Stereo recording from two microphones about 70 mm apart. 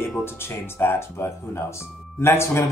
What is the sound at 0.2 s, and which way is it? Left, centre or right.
A man's voice, left.